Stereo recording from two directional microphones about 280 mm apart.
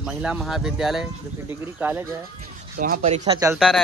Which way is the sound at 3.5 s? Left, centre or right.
Centre.